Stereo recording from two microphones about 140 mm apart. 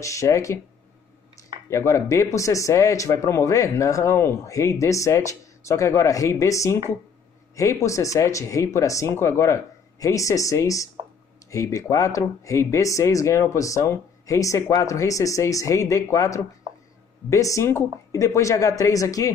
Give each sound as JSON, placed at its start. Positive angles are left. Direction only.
{"t": 0.0, "sound": "speech", "side_deg": 20}
{"t": 1.7, "sound": "speech", "side_deg": 20}